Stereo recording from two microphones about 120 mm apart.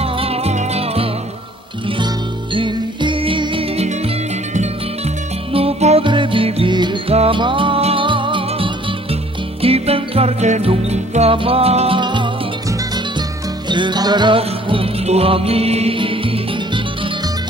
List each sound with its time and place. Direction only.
0.0 s music: 55° right (ahead or behind)
2.5 s music: 40° right (ahead or behind); by 6.0 s 60° right (ahead or behind)
6.0 s music: 45° right (ahead or behind)
7.1 s music: 50° right (ahead or behind)
12.0 s music: 40° right (ahead or behind)
13.7 s music: 40° right (ahead or behind)